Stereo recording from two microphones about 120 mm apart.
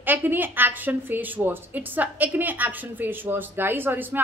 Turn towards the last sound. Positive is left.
turn(degrees=-15)  # may be behind; listen again after turning